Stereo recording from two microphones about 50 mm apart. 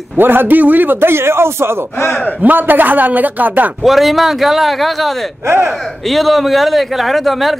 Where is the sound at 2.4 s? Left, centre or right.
Right.